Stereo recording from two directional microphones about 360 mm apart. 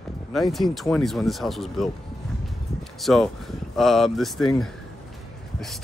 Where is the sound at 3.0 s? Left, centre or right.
Centre.